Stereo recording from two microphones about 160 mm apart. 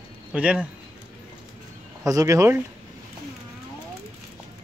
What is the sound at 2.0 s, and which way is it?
Speech, 20° right (ahead or behind).